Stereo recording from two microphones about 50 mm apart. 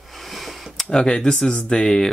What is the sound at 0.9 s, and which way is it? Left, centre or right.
Speech, centre.